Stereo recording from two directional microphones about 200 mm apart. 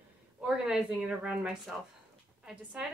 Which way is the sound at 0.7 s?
5° right (ahead or behind).